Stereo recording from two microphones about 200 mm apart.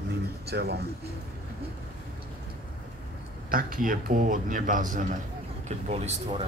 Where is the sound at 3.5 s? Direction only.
45° right (ahead or behind).